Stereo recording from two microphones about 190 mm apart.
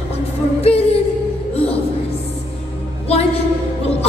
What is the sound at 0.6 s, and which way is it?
Music, 30° left (ahead or behind).